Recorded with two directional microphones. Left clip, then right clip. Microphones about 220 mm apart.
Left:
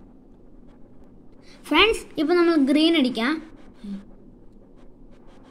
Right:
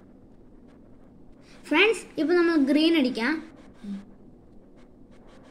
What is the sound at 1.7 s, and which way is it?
A woman's voice, 30° left (ahead or behind).